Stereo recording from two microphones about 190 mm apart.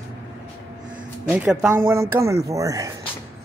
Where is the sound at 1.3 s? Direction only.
5° right (ahead or behind).